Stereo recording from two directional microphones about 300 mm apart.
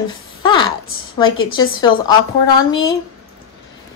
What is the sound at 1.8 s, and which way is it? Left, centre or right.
A woman's voice, centre.